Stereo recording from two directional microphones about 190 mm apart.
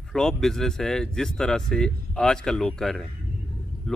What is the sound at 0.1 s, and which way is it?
Speech, 5° left (ahead or behind).